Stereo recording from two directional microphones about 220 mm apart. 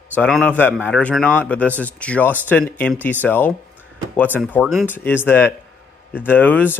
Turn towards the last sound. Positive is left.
turn(degrees=10)  # may be behind; listen again after turning